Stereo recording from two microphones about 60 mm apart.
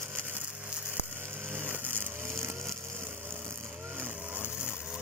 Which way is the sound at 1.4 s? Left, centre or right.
Right.